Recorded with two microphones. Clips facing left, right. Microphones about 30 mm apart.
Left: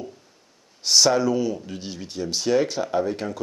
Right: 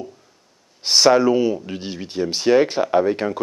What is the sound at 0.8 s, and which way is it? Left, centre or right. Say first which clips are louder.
Speech: right 5 dB; right.